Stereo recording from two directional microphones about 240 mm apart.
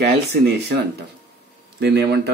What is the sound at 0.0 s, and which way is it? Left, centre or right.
Speech, right.